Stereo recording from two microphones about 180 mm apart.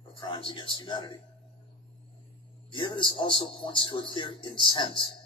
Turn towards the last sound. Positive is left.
turn(degrees=25)  # may be behind; listen again after turning